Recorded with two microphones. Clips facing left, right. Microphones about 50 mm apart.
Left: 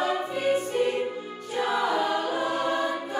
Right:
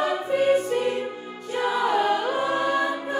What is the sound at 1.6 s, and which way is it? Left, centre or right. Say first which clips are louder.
Choir: right 3 dB; right.